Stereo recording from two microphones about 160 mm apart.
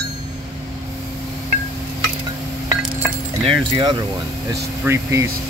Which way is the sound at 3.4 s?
30° right (ahead or behind).